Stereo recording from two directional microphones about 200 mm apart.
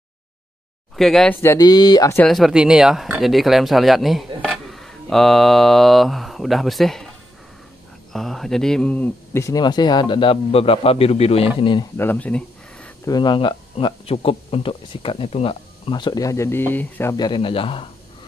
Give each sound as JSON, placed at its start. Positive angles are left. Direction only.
{"t": 0.9, "sound": "speech", "side_deg": 0}
{"t": 1.4, "sound": "speech", "side_deg": 15}
{"t": 2.2, "sound": "speech", "side_deg": 0}
{"t": 8.1, "sound": "speech", "side_deg": 0}
{"t": 12.0, "sound": "a sound", "side_deg": 10}
{"t": 13.0, "sound": "speech", "side_deg": 20}